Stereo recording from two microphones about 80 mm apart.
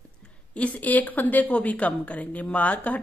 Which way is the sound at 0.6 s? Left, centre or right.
Centre.